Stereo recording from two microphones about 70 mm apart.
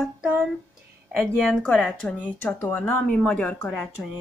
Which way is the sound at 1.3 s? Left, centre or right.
Centre.